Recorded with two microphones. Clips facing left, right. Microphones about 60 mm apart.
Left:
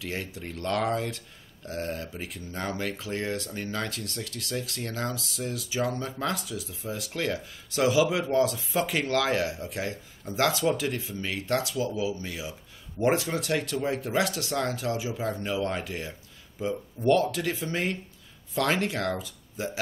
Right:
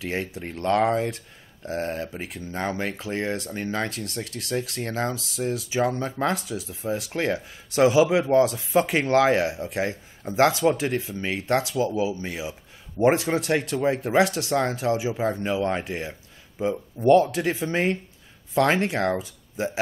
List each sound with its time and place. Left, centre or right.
0.0 s speech: right